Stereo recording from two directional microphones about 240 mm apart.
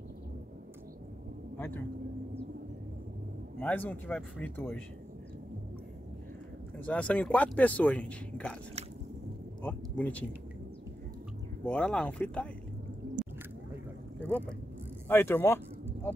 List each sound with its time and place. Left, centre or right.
1.6 s speech: centre
3.5 s speech: centre
6.8 s speech: centre
9.6 s speech: centre
11.6 s speech: centre
13.0 s boat: right
15.0 s speech: centre